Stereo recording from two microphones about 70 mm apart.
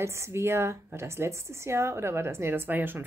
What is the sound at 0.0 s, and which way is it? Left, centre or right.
A woman's voice, right.